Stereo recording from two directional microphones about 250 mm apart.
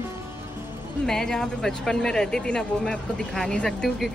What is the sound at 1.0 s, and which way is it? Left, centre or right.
Speech, centre.